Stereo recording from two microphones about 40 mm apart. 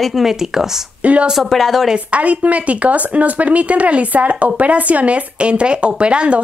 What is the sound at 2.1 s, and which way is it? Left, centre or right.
Speech, right.